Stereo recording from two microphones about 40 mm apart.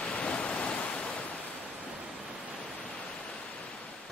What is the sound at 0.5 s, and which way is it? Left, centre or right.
Pink noise, centre.